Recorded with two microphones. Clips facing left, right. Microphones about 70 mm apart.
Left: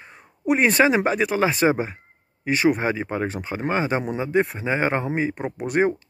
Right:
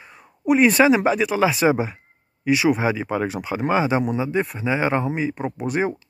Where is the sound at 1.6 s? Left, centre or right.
Centre.